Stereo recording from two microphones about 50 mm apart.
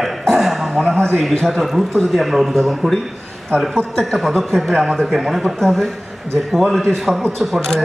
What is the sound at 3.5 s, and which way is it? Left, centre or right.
Speech, right.